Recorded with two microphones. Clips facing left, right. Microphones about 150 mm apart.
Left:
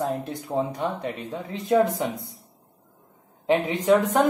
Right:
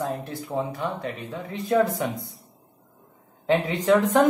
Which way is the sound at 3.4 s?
20° left (ahead or behind).